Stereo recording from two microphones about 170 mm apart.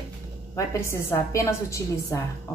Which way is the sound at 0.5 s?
15° left (ahead or behind).